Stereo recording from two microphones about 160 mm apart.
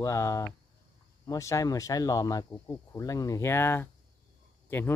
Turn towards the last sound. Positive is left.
turn(degrees=15)  # may be behind; listen again after turning